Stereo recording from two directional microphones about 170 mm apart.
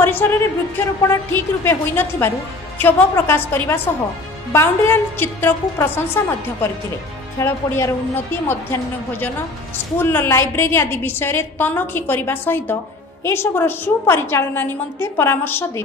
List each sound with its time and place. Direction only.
0.0 s a woman's voice: 15° left (ahead or behind)
9.9 s a woman's voice: 15° left (ahead or behind)